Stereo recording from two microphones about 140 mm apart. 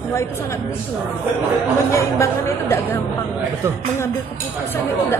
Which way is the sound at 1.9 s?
20° left (ahead or behind).